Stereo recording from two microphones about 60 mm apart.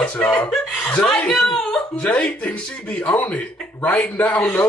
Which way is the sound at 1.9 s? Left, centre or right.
Left.